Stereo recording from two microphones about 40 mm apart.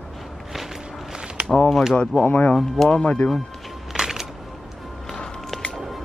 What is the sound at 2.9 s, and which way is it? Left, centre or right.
Speech, left.